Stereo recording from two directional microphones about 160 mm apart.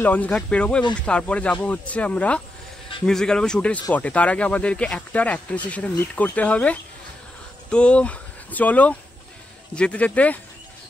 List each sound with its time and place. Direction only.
0.0 s speech: 10° left (ahead or behind)